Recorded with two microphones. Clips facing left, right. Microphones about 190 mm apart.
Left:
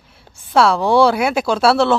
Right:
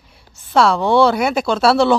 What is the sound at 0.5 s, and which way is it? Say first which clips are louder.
Speech: even; 5° left (ahead or behind).